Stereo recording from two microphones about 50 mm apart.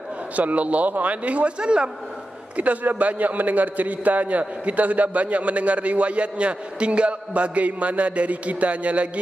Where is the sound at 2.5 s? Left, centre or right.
Right.